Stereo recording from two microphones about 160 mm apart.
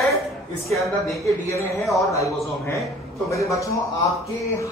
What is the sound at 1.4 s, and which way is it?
Speech, 20° left (ahead or behind).